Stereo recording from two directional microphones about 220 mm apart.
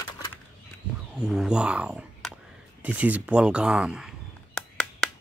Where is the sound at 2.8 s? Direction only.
5° right (ahead or behind).